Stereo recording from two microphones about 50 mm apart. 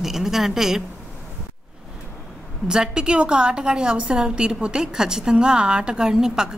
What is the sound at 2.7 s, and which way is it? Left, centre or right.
A woman's voice, centre.